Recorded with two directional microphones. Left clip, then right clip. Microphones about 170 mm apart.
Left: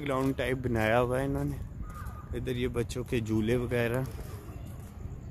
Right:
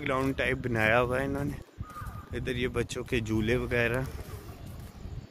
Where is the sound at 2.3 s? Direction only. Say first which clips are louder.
Right 1 dB; 5° left (ahead or behind).